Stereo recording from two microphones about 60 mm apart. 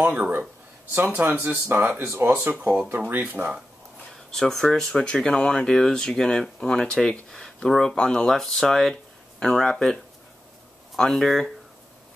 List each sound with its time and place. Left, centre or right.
0.0 s speech: right
2.2 s speech: right
4.3 s speech: centre
5.0 s speech: centre
11.0 s speech: centre